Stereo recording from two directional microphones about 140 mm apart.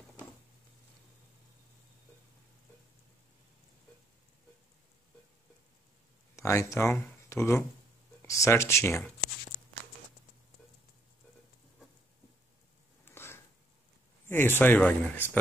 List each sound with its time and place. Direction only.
6.3 s speech: 20° left (ahead or behind)
13.0 s a sound: 15° left (ahead or behind)
14.2 s speech: 15° left (ahead or behind)